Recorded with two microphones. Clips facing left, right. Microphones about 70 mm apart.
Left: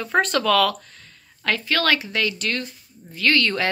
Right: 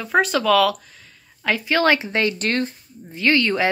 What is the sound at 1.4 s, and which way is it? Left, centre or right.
A woman's voice, centre.